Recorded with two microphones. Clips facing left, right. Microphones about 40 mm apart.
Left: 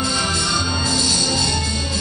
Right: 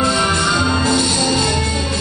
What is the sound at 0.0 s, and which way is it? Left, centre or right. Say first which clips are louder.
Music: right 6 dB; right.